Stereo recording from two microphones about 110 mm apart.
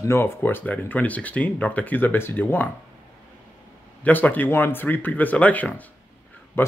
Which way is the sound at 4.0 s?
15° left (ahead or behind).